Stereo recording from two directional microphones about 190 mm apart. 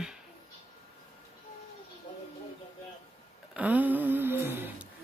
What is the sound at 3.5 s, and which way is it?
Speech, 10° right (ahead or behind).